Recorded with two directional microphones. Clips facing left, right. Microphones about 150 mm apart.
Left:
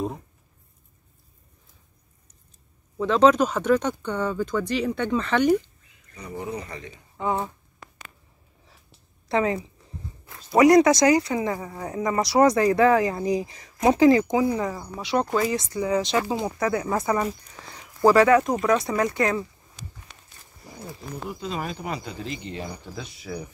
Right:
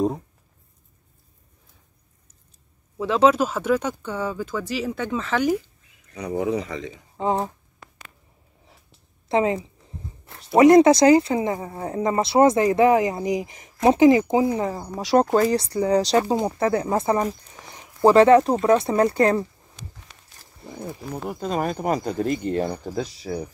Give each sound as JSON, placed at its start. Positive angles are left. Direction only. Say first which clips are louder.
{"t": 3.0, "sound": "speech", "louder": "even", "side_deg": -5}
{"t": 6.1, "sound": "speech", "louder": "right 8 dB", "side_deg": -85}
{"t": 7.2, "sound": "speech", "louder": "right 3 dB", "side_deg": -25}
{"t": 9.3, "sound": "speech", "louder": "right 2 dB", "side_deg": -20}
{"t": 20.8, "sound": "speech", "louder": "right 4 dB", "side_deg": -50}